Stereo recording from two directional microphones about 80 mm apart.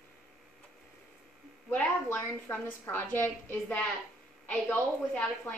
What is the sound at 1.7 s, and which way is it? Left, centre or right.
A woman's voice, left.